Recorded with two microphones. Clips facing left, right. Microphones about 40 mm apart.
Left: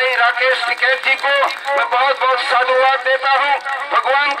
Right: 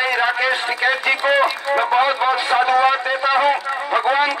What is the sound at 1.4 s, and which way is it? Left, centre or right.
Speech, left.